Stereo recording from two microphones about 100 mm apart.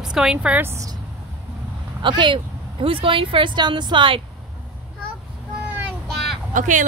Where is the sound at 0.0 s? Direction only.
5° right (ahead or behind).